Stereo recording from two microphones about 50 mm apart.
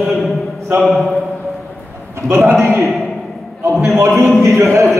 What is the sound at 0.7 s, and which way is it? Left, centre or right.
Speech, centre.